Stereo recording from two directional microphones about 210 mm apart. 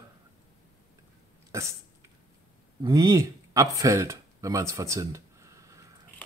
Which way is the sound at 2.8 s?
15° right (ahead or behind).